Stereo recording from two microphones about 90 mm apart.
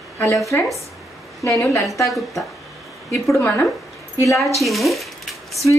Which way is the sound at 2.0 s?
Centre (ahead or behind).